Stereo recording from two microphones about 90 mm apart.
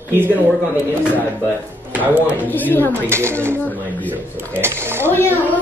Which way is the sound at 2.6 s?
20° left (ahead or behind).